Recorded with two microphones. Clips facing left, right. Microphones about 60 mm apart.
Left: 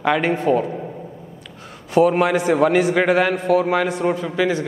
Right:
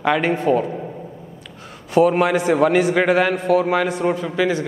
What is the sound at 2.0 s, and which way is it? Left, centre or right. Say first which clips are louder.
A man's voice: even; centre.